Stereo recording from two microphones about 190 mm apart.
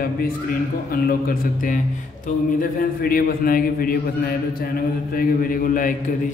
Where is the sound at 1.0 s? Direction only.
50° left (ahead or behind).